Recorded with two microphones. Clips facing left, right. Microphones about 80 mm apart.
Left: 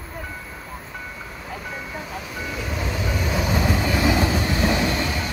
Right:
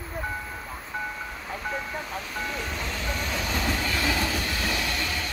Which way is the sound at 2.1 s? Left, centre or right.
Centre.